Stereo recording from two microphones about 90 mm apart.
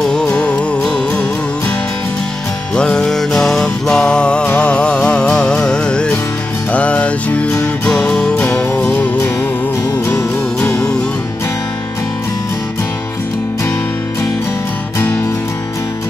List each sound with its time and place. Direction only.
0.1 s music: 10° left (ahead or behind)
2.7 s music: 10° left (ahead or behind)
8.7 s music: 20° left (ahead or behind)
10.7 s music: 5° left (ahead or behind)